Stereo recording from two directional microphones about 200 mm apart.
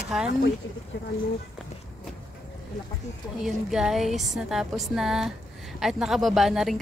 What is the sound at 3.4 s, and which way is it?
Speech, centre (ahead or behind).